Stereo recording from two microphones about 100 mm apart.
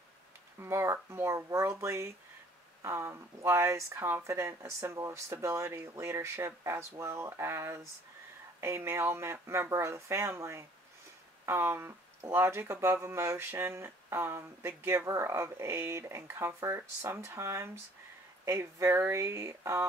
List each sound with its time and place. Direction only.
0.6 s speech: 25° right (ahead or behind)